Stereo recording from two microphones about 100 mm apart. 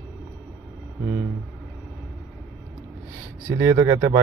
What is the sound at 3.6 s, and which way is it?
Speech, 35° right (ahead or behind).